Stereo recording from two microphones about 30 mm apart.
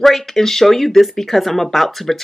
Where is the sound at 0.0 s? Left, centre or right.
Centre.